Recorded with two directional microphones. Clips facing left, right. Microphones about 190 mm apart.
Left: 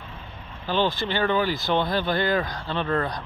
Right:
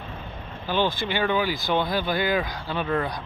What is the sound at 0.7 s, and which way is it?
Speech, 10° right (ahead or behind).